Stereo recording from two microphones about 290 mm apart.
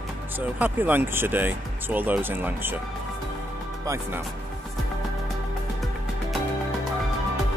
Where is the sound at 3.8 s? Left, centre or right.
Centre.